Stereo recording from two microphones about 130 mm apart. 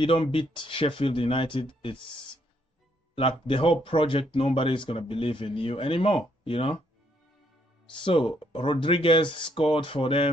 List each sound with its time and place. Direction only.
0.0 s speech: 40° left (ahead or behind)
7.9 s speech: 40° left (ahead or behind)